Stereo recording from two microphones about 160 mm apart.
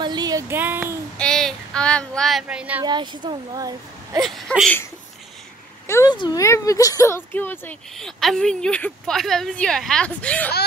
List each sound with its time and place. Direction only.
0.0 s a sound: 25° right (ahead or behind)
1.1 s speech: 5° left (ahead or behind)
2.8 s speech: 30° right (ahead or behind)
4.2 s speech: 5° left (ahead or behind)
5.9 s speech: 15° left (ahead or behind)